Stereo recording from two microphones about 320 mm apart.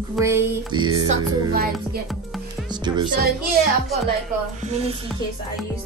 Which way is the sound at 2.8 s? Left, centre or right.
Centre.